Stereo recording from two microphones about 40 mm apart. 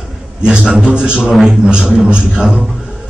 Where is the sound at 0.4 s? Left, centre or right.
Right.